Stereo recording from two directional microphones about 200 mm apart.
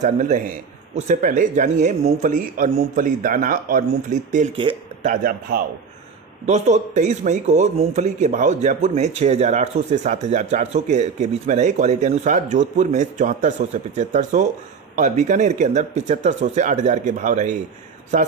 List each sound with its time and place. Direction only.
0.0 s speech: 40° right (ahead or behind)
4.6 s speech: 25° right (ahead or behind)
6.4 s speech: 35° right (ahead or behind)